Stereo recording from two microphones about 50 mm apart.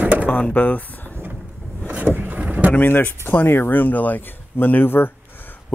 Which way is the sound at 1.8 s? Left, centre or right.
Right.